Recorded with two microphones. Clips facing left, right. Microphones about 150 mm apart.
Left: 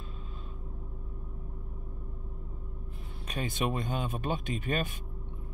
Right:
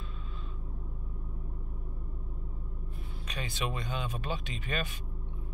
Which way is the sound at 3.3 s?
50° left (ahead or behind).